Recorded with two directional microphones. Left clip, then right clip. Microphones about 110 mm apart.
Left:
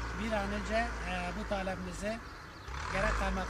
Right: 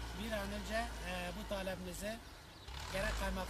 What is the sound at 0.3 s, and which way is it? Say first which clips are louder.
Speech: left 7 dB; 30° right (ahead or behind).